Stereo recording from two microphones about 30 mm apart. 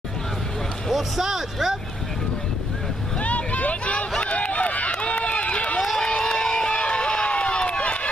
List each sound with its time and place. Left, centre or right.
0.9 s speech: centre
3.2 s a sound: left
4.2 s run: left
6.3 s crowd: left
6.7 s run: left